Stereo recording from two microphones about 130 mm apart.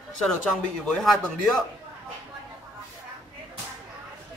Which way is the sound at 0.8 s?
Centre (ahead or behind).